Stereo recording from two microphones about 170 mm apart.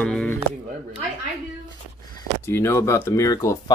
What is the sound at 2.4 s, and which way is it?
Speech, 15° left (ahead or behind).